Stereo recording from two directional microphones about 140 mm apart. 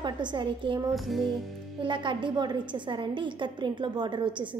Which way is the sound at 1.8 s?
35° right (ahead or behind).